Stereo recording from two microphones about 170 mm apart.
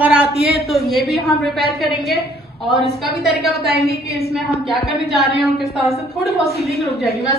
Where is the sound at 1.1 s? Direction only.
Centre (ahead or behind).